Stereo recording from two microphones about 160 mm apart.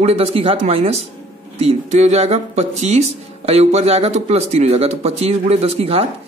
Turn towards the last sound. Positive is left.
turn(degrees=-40)  # may be behind; listen again after turning